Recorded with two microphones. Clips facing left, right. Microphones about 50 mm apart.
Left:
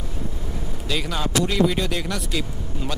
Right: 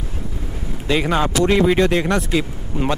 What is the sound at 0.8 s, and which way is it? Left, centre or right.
Speech, right.